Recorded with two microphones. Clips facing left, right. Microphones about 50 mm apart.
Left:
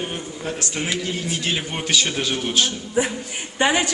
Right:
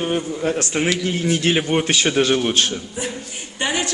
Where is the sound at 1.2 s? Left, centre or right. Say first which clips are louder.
Right 7 dB; right.